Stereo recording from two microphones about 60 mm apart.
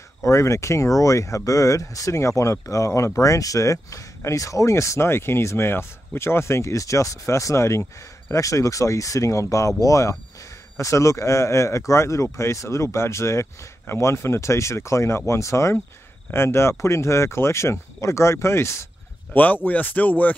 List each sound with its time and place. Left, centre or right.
0.2 s speech: left
19.3 s speech: left